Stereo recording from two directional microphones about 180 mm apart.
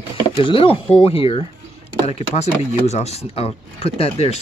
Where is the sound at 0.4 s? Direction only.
30° left (ahead or behind).